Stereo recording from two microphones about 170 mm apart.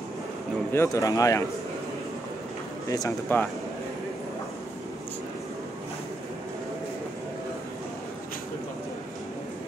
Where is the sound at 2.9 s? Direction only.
20° left (ahead or behind).